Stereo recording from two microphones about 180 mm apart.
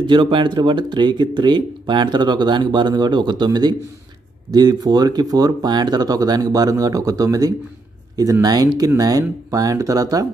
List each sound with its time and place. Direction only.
0.0 s speech: 25° right (ahead or behind)